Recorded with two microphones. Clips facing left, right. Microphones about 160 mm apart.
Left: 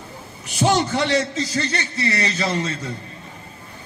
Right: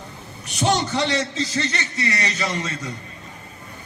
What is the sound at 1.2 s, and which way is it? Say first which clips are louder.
Speech: left 2 dB; 25° right (ahead or behind).